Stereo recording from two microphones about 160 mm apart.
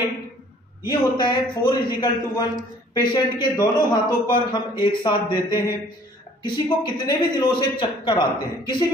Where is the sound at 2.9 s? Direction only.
25° left (ahead or behind).